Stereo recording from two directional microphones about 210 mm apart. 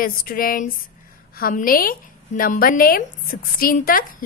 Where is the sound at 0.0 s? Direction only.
45° left (ahead or behind).